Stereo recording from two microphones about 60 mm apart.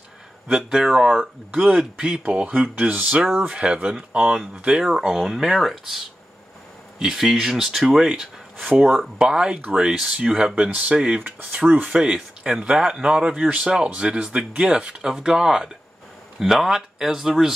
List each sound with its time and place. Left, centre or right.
0.5 s speech: centre
1.5 s speech: right
2.0 s speech: centre
2.2 s speech: right
5.0 s speech: centre
10.5 s speech: right
11.1 s speech: right
11.9 s speech: centre